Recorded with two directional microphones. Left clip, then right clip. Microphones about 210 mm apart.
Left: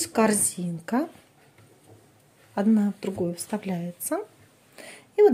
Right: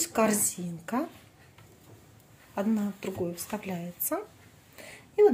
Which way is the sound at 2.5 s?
20° left (ahead or behind).